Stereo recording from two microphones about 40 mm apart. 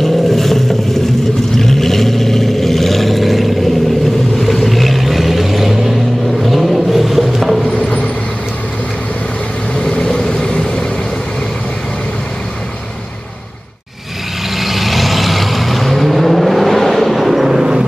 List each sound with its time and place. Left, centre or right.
0.0 s vehicle: centre
6.8 s a sound: centre
7.7 s vehicle: left
9.8 s vehicle: centre
14.6 s vehicle: centre